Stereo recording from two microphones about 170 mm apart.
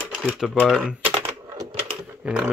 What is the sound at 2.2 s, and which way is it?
Speech, 5° right (ahead or behind).